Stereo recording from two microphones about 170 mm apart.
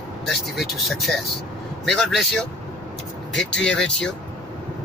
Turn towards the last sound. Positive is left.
turn(degrees=5)  # may be behind; listen again after turning